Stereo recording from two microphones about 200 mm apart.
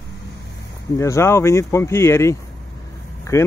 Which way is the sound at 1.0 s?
15° left (ahead or behind).